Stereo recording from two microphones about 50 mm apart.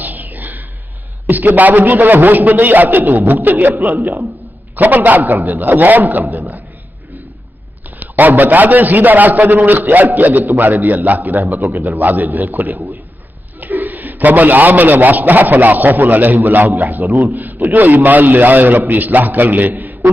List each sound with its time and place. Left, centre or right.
0.0 s a sound: right
1.2 s a man's voice: right
4.7 s a man's voice: right
8.0 s a man's voice: right